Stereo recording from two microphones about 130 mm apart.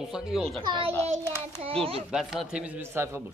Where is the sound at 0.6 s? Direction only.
40° right (ahead or behind).